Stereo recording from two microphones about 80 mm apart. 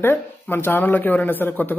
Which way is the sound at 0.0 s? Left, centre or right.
Left.